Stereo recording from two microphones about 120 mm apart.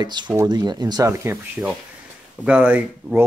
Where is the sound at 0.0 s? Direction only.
40° right (ahead or behind).